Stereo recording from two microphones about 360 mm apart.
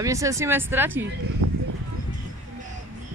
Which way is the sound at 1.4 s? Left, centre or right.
Right.